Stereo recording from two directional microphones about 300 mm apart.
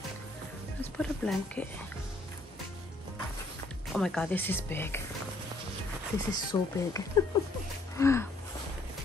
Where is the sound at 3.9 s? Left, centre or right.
Centre.